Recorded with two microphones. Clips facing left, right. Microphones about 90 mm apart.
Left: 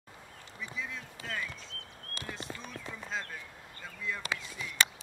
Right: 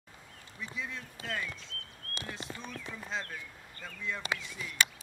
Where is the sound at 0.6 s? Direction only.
Centre (ahead or behind).